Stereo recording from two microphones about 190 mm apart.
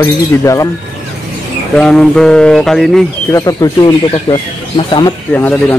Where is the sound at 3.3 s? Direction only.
20° left (ahead or behind).